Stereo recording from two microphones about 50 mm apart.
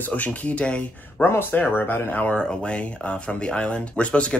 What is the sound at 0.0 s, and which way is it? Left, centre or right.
Speech, left.